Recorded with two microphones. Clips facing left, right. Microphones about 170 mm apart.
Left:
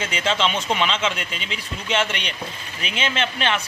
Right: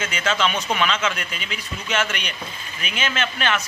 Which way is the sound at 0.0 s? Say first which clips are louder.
Even; 30° left (ahead or behind).